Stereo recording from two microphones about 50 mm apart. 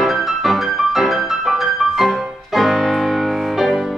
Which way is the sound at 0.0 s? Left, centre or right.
Centre.